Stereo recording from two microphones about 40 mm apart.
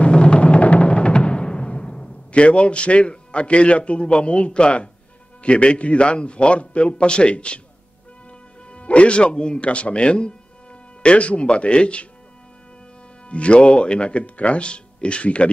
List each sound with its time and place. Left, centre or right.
0.0 s timpani: left
5.4 s a man's voice: left
8.7 s a man's voice: left
13.3 s a man's voice: left